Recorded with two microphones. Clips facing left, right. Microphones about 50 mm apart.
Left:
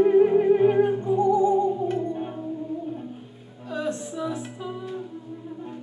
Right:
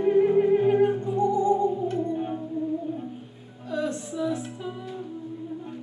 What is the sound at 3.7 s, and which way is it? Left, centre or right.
Music, centre.